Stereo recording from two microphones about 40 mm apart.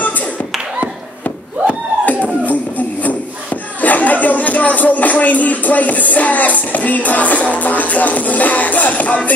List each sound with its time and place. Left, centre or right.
3.8 s music: left